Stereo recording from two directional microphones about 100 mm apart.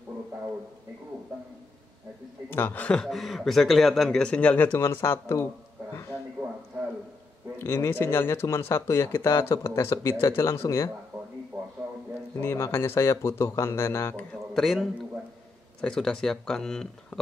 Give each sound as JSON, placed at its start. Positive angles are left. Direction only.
{"t": 2.5, "sound": "speech", "side_deg": 20}
{"t": 7.6, "sound": "speech", "side_deg": 25}
{"t": 11.5, "sound": "a sound", "side_deg": -10}
{"t": 12.4, "sound": "speech", "side_deg": 25}
{"t": 14.5, "sound": "a man's voice", "side_deg": 0}